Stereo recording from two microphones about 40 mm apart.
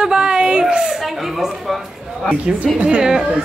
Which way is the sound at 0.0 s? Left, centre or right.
Right.